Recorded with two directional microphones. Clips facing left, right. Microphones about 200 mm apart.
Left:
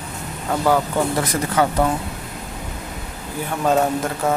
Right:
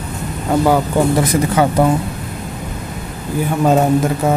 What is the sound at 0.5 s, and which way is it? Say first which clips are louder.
Speech: right 5 dB; 15° right (ahead or behind).